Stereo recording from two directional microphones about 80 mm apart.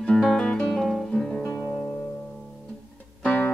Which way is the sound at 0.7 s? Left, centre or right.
Centre.